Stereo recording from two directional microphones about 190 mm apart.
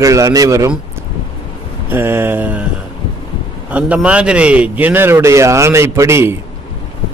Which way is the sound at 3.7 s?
5° right (ahead or behind).